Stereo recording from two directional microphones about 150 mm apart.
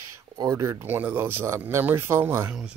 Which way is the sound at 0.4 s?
20° right (ahead or behind).